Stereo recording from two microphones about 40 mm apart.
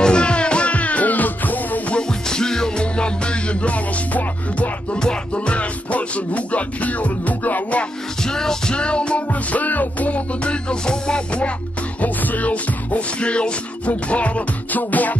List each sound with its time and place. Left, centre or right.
0.0 s music: left
1.9 s music: centre
2.8 s music: left
4.9 s music: left
8.2 s music: centre
9.3 s music: left
12.0 s music: left
14.8 s music: left